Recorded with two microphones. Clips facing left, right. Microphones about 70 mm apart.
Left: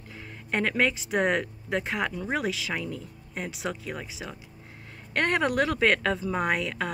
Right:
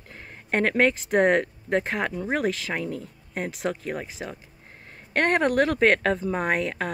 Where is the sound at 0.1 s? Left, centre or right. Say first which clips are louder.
Right 3 dB; right.